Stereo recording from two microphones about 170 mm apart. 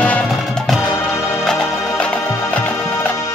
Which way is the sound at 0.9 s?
15° left (ahead or behind).